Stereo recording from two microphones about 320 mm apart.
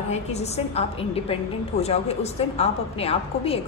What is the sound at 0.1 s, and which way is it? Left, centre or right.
A woman's voice, centre.